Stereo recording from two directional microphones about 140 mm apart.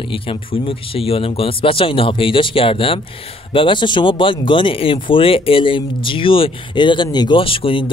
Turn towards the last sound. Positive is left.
turn(degrees=40)  # may be behind; listen again after turning